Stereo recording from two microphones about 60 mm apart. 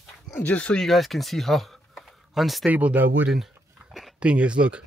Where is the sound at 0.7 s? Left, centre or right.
Centre.